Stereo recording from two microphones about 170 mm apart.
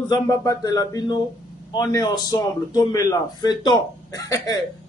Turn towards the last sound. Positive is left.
turn(degrees=20)  # may be behind; listen again after turning